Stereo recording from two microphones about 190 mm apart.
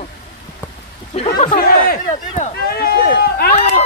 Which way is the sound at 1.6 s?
50° left (ahead or behind).